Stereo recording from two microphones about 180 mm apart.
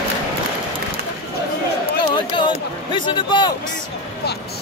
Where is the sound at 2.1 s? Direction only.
25° left (ahead or behind).